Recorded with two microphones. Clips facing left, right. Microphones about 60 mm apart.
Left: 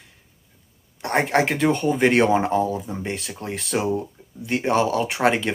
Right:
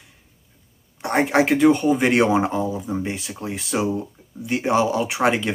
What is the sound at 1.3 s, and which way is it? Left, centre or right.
Speech, centre.